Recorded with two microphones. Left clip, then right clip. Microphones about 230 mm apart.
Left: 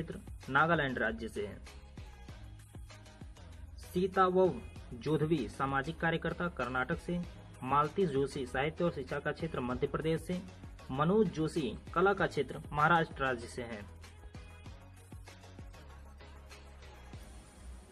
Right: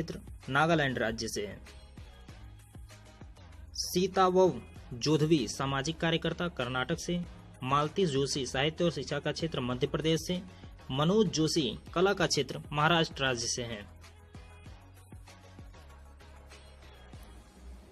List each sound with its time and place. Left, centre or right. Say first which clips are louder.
0.5 s speech: right 2 dB; centre
3.9 s speech: right 3 dB; centre